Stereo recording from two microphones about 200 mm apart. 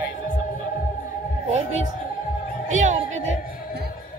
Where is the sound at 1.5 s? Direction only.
35° right (ahead or behind).